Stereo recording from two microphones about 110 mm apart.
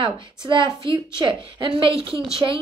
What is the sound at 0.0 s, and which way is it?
A woman's voice, 45° right (ahead or behind).